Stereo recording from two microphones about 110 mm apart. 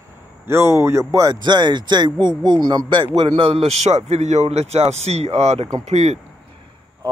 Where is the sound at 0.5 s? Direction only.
25° right (ahead or behind); by 3.1 s 40° right (ahead or behind).